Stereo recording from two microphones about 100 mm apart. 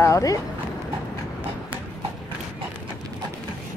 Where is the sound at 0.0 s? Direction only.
35° left (ahead or behind).